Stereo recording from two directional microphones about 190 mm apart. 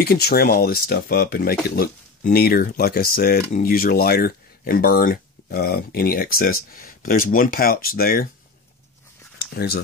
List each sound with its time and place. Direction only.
0.0 s speech: 55° left (ahead or behind)
9.5 s speech: 55° left (ahead or behind)